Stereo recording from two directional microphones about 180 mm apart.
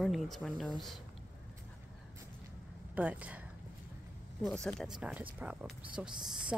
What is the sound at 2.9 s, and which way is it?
Speech, 5° right (ahead or behind).